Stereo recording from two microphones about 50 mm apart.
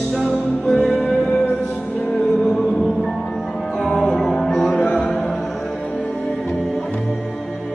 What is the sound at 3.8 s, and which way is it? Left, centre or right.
Music, centre.